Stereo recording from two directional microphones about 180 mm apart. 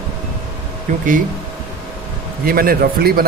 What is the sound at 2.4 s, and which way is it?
Speech, 55° right (ahead or behind).